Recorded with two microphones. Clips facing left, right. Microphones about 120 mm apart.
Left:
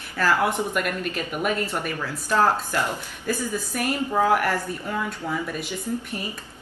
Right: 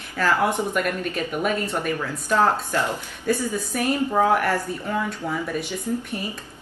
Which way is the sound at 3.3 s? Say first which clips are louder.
Right 3 dB; 15° right (ahead or behind).